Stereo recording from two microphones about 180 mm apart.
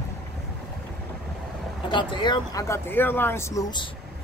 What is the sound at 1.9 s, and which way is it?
Speech, 25° left (ahead or behind).